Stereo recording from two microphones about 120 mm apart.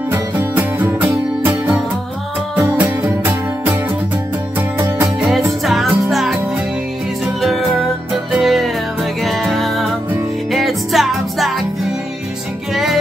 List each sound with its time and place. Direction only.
0.1 s music: 15° right (ahead or behind)
4.7 s music: 20° right (ahead or behind)
5.7 s music: centre (ahead or behind)
8.1 s music: centre (ahead or behind)